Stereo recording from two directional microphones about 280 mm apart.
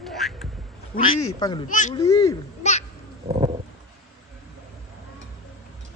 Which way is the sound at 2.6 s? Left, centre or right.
Left.